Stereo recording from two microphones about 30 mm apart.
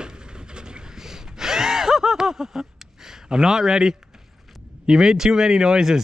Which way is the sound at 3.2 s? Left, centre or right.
Right.